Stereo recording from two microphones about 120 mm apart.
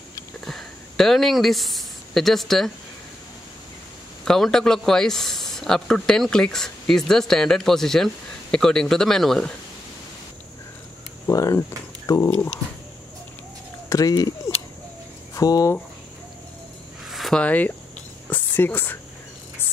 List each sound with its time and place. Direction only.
0.5 s speech: centre (ahead or behind)
4.2 s speech: 5° left (ahead or behind)
11.2 s a sound: 25° left (ahead or behind)
12.3 s speech: 10° left (ahead or behind)
13.8 s speech: 30° left (ahead or behind)
15.3 s speech: 30° left (ahead or behind)
17.0 s a sound: centre (ahead or behind)
17.4 s speech: 10° left (ahead or behind)
18.3 s whispering: 15° left (ahead or behind)